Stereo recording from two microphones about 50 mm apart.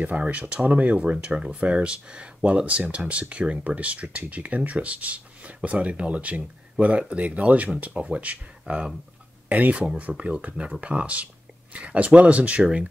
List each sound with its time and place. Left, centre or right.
0.0 s speech: right